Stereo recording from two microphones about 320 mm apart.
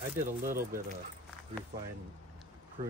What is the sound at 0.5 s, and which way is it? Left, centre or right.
Speech, right.